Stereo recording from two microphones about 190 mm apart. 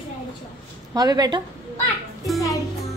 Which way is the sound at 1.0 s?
20° right (ahead or behind).